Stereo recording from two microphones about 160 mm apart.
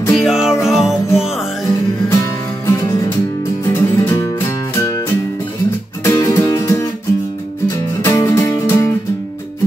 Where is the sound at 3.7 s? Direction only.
15° left (ahead or behind).